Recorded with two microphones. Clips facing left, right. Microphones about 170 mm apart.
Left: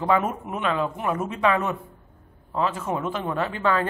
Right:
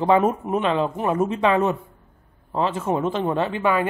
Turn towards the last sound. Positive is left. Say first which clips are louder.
# right 3 dB
turn(degrees=-15)  # may be behind; listen again after turning